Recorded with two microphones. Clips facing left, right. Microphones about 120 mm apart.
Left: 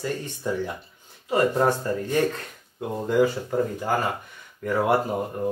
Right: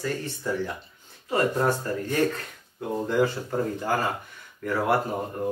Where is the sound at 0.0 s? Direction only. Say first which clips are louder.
Left 1 dB; 20° left (ahead or behind).